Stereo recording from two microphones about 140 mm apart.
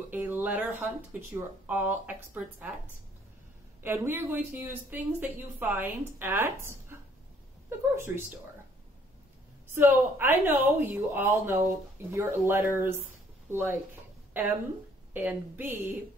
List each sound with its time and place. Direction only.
0.1 s speech: 15° right (ahead or behind)
3.8 s speech: 15° right (ahead or behind)
9.8 s speech: 15° right (ahead or behind)